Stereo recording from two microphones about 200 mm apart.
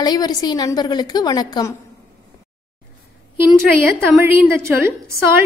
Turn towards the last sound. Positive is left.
turn(degrees=-15)  # may be behind; listen again after turning